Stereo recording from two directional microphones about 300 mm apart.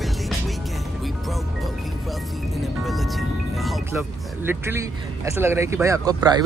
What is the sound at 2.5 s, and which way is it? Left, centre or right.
A man's voice, centre.